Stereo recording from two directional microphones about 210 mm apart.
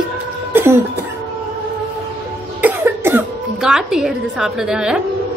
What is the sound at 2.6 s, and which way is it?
Cough, 10° right (ahead or behind).